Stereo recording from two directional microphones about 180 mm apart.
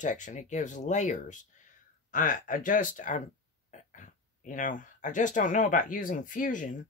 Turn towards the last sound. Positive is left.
turn(degrees=45)  # may be behind; listen again after turning